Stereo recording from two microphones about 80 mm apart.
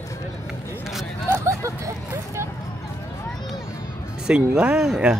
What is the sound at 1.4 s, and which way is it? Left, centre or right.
Hubbub, right.